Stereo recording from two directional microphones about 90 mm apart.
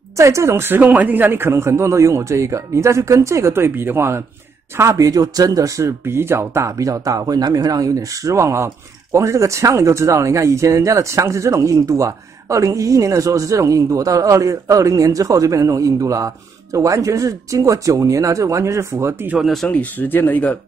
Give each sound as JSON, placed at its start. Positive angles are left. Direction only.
{"t": 0.2, "sound": "speech", "side_deg": -35}
{"t": 19.4, "sound": "speech", "side_deg": 0}
{"t": 19.7, "sound": "speech", "side_deg": 20}